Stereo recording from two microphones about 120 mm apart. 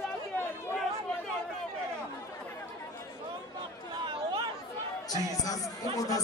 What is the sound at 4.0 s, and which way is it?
Chatter, 40° right (ahead or behind).